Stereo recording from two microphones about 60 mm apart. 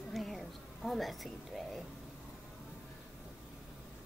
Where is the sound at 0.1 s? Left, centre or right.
Centre.